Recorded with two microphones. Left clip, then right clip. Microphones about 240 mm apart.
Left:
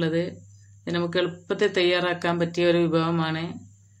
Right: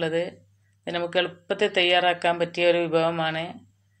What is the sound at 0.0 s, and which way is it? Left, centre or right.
Speech, centre.